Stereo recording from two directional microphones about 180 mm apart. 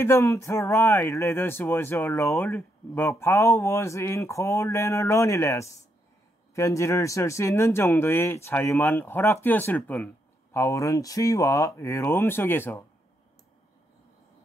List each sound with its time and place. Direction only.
0.0 s speech: 15° left (ahead or behind)